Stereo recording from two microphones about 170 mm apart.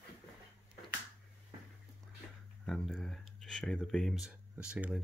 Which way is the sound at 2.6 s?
Centre (ahead or behind).